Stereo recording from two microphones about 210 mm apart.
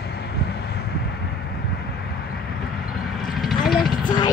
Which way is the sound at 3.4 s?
Centre (ahead or behind).